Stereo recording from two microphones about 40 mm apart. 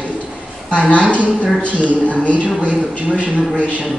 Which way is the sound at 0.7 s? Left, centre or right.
Left.